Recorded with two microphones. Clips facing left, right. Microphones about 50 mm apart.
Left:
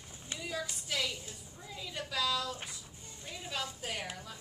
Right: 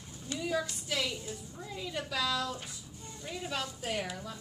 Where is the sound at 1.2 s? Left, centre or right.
Centre.